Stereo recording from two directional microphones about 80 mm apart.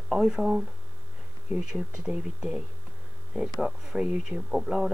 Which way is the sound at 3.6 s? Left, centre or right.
Centre.